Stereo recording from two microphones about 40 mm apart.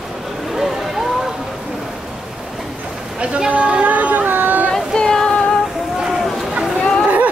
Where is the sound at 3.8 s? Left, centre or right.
Right.